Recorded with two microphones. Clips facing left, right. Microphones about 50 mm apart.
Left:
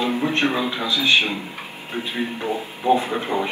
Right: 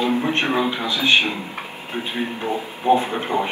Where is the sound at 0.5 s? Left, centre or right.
Right.